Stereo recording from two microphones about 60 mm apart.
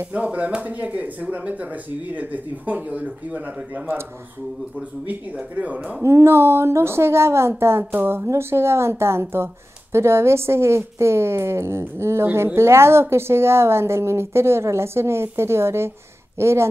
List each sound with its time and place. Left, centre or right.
0.1 s speech: right
5.6 s speech: right
6.0 s a woman's voice: right